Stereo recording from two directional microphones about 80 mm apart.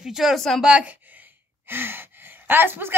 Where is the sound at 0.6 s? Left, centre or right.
Centre.